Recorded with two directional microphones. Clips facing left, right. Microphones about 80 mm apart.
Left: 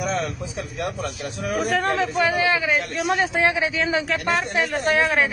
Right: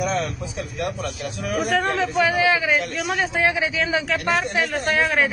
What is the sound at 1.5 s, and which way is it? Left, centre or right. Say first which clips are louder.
A man's voice: even; centre.